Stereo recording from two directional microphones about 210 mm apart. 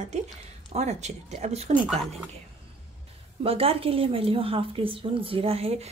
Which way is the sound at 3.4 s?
30° right (ahead or behind).